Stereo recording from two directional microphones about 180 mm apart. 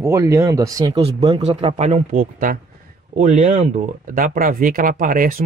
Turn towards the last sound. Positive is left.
turn(degrees=-50)  # may be behind; listen again after turning